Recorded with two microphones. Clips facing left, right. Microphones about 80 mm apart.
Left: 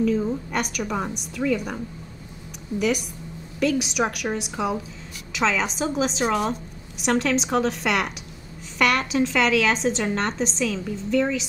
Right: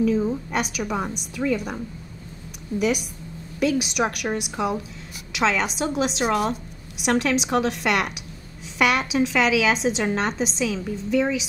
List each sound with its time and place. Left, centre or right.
0.0 s a woman's voice: centre
2.8 s a woman's voice: centre